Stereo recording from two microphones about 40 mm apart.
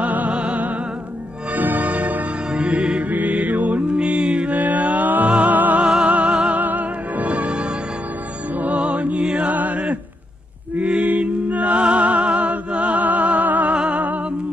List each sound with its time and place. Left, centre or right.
0.0 s music: right
1.5 s music: right
2.5 s mantra: right
3.1 s music: right
4.5 s mantra: right
5.3 s music: right
5.8 s music: right
6.0 s music: right
6.6 s music: right
9.2 s music: right
9.5 s music: right